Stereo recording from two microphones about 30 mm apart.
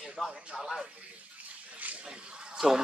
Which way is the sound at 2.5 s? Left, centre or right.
Centre.